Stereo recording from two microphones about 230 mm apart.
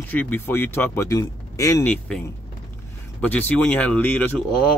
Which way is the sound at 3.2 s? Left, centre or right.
Centre.